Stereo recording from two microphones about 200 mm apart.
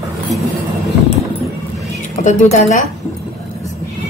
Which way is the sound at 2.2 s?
35° left (ahead or behind).